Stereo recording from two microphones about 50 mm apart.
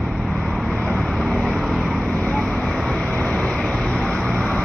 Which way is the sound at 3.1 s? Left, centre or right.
Centre.